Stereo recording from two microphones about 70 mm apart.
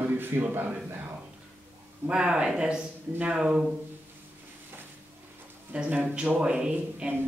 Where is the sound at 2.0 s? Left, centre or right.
Centre.